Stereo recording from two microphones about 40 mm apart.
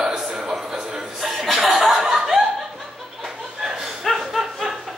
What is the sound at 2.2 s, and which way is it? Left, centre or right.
Laughter, centre.